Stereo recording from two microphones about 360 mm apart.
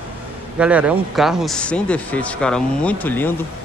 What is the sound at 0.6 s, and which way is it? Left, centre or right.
Speech, centre.